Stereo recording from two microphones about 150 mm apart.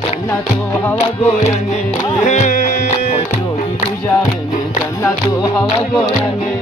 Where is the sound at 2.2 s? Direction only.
45° left (ahead or behind).